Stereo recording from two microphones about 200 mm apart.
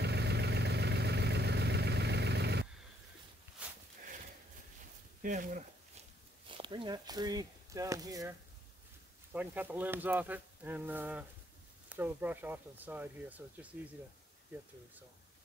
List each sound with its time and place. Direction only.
0.0 s vehicle: 55° right (ahead or behind)
3.6 s livestock: 5° right (ahead or behind)
5.2 s speech: 40° right (ahead or behind)
6.5 s speech: 25° right (ahead or behind)
9.3 s speech: 10° right (ahead or behind)